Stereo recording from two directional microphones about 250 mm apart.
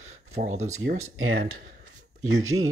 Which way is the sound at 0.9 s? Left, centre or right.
Right.